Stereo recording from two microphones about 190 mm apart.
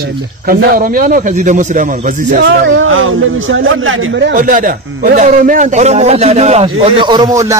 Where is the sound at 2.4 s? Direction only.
75° right (ahead or behind).